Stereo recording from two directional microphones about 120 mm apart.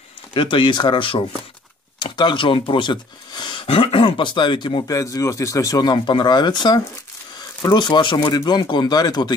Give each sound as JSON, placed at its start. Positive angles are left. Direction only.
{"t": 0.3, "sound": "speech", "side_deg": 45}
{"t": 4.9, "sound": "speech", "side_deg": 25}